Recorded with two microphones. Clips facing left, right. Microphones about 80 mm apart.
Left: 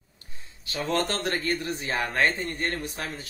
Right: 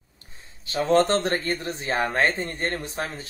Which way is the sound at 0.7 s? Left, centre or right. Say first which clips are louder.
Right 7 dB; right.